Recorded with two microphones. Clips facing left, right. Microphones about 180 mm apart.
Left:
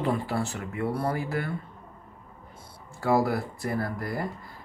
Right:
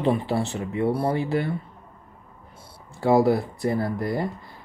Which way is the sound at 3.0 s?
30° right (ahead or behind).